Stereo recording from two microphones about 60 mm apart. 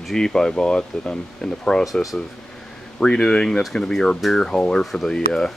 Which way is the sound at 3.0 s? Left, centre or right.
Centre.